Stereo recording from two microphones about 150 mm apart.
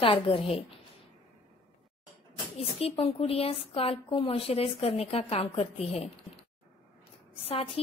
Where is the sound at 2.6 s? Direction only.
40° left (ahead or behind).